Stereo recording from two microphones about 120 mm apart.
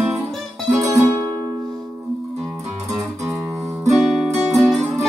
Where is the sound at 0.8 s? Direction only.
25° right (ahead or behind).